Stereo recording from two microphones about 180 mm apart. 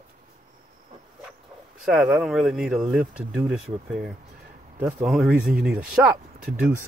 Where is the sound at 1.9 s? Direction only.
5° right (ahead or behind).